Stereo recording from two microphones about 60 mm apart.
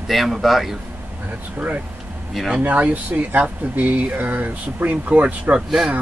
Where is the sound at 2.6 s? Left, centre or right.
Right.